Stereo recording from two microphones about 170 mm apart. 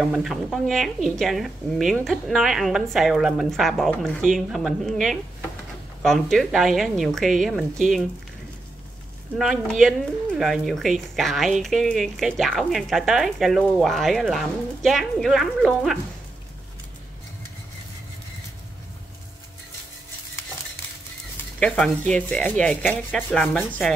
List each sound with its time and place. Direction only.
0.0 s speech: centre (ahead or behind)
9.4 s speech: centre (ahead or behind)
21.5 s speech: 5° left (ahead or behind)